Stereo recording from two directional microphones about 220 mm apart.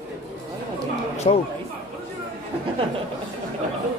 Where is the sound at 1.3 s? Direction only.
25° left (ahead or behind).